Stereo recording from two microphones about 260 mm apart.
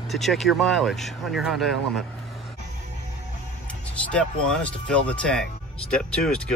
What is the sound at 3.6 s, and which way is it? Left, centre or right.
Speech, centre.